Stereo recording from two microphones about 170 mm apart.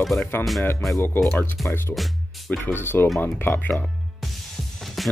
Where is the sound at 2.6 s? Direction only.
10° left (ahead or behind).